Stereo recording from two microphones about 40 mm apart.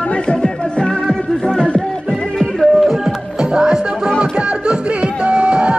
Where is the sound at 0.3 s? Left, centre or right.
Left.